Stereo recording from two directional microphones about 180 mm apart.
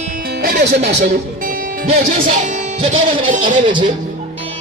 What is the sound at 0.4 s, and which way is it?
Music, 60° right (ahead or behind).